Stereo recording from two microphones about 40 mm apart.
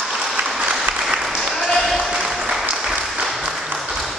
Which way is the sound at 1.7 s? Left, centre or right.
Centre.